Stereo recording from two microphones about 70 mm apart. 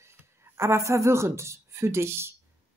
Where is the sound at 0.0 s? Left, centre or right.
Right.